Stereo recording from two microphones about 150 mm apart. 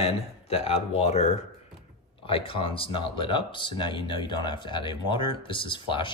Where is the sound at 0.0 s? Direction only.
40° left (ahead or behind).